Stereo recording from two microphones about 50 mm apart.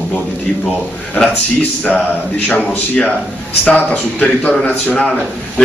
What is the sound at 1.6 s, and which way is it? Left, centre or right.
Speech, left.